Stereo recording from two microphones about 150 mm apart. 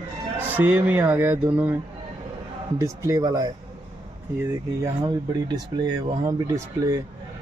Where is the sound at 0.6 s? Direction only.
10° right (ahead or behind).